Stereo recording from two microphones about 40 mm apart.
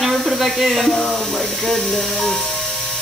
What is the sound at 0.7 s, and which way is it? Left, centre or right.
Speech, centre.